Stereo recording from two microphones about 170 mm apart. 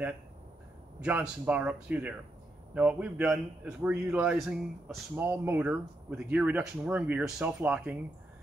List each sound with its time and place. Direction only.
1.0 s a man's voice: 10° right (ahead or behind)